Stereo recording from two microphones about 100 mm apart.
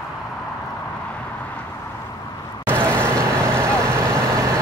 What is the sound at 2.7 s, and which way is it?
Vehicle, 25° right (ahead or behind).